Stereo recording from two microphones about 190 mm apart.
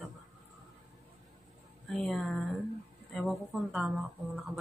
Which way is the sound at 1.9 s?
Centre (ahead or behind).